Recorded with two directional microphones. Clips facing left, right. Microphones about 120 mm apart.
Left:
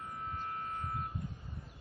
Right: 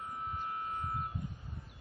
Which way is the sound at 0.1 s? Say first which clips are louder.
Right 1 dB; 15° right (ahead or behind).